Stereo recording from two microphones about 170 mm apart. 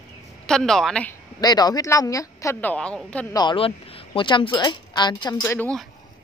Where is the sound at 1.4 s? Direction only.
25° left (ahead or behind); by 3.2 s 5° left (ahead or behind).